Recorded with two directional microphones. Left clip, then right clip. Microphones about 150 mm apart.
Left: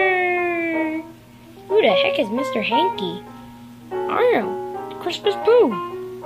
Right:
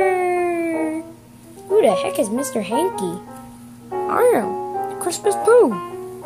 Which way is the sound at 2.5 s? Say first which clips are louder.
Left 4 dB; 10° right (ahead or behind).